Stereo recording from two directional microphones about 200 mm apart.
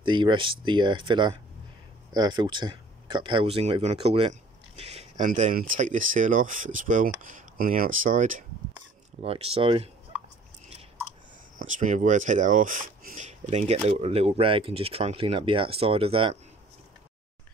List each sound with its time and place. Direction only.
0.0 s speech: 25° right (ahead or behind); by 8.5 s 40° right (ahead or behind)
9.2 s speech: 30° right (ahead or behind)
11.5 s speech: 40° right (ahead or behind)